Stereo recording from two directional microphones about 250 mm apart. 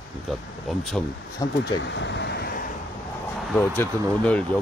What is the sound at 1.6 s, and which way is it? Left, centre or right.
Speech, left.